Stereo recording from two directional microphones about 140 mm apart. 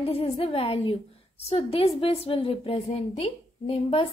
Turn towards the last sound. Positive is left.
turn(degrees=45)  # may be behind; listen again after turning